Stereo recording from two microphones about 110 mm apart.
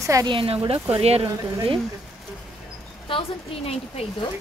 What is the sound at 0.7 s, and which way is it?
Speech, 65° right (ahead or behind).